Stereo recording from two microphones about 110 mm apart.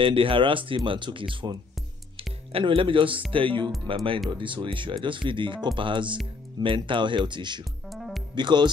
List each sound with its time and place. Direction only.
0.0 s speech: 55° right (ahead or behind)
7.9 s music: centre (ahead or behind)
8.4 s speech: 45° right (ahead or behind)